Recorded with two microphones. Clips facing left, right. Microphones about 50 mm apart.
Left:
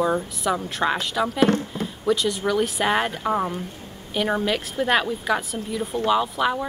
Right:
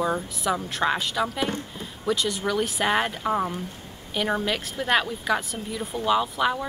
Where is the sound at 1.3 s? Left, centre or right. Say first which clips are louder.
Left 8 dB; left.